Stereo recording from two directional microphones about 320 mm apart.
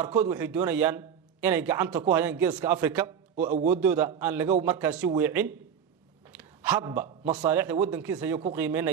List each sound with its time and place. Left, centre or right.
0.0 s a man's voice: centre
3.3 s a man's voice: right
3.7 s a man's voice: centre
6.3 s a sound: centre
7.4 s a man's voice: centre